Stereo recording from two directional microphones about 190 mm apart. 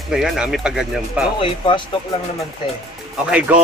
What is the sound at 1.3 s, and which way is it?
Speech, 25° left (ahead or behind).